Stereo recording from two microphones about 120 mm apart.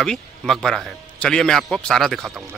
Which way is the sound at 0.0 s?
5° left (ahead or behind).